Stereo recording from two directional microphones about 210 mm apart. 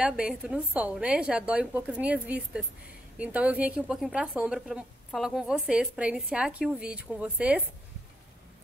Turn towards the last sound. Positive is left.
turn(degrees=-5)  # may be behind; listen again after turning